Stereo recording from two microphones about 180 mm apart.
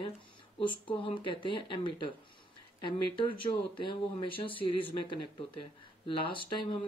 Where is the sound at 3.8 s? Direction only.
30° left (ahead or behind).